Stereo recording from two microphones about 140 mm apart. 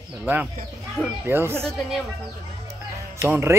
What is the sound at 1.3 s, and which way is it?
Speech, 15° right (ahead or behind).